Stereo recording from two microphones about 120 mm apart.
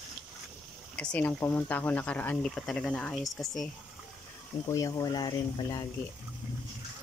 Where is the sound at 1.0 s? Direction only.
10° left (ahead or behind).